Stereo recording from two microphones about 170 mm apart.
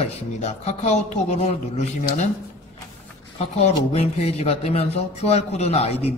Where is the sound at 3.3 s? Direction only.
40° left (ahead or behind).